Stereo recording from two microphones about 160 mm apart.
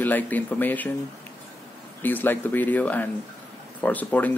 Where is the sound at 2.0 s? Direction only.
10° left (ahead or behind).